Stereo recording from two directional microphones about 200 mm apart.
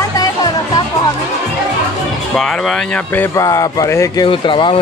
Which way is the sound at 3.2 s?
15° left (ahead or behind).